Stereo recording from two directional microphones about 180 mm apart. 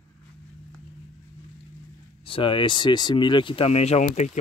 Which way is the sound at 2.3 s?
30° left (ahead or behind).